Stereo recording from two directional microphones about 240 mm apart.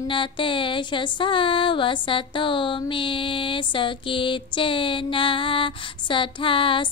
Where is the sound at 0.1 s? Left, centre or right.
Left.